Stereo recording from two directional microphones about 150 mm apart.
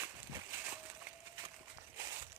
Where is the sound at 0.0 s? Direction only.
15° right (ahead or behind).